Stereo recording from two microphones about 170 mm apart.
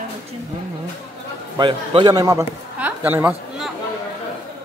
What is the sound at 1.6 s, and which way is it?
Speech, 25° right (ahead or behind).